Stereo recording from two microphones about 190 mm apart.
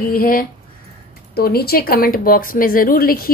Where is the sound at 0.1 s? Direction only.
50° left (ahead or behind).